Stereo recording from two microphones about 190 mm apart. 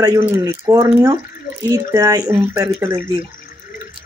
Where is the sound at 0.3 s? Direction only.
15° right (ahead or behind).